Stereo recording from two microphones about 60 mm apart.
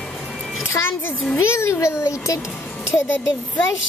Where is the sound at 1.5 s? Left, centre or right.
Left.